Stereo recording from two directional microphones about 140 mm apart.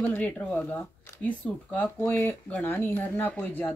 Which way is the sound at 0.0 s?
10° left (ahead or behind).